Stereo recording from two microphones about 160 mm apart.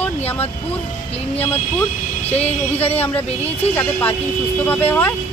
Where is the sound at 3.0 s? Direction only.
10° left (ahead or behind).